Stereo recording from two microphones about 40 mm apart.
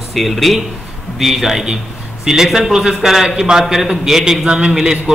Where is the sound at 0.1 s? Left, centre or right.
Centre.